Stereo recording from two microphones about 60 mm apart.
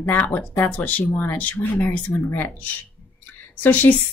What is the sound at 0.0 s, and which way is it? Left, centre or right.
Speech, left.